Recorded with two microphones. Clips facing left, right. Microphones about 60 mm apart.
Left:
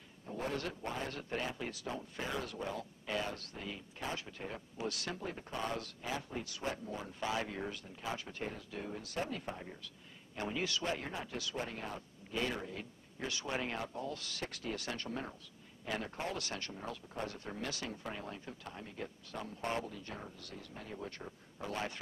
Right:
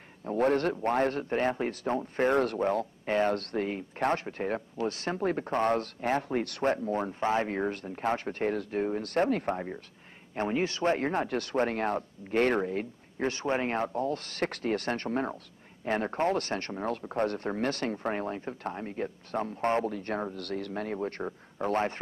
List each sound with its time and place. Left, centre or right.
0.2 s speech: right
4.8 s speech: right
10.3 s speech: right